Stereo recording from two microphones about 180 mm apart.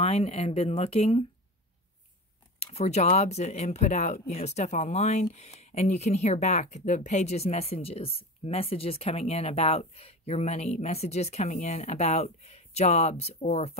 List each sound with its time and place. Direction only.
0.0 s speech: 35° left (ahead or behind)
2.6 s speech: 35° left (ahead or behind)